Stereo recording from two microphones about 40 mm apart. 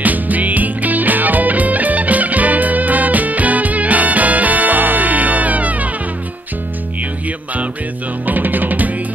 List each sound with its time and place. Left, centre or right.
0.0 s music: right
8.3 s music: right